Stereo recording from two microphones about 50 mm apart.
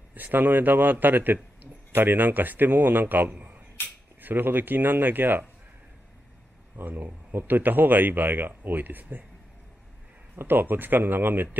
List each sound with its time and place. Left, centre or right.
0.1 s a man's voice: right
3.3 s a sound: right
4.2 s a man's voice: right
6.8 s a man's voice: right
10.3 s a man's voice: right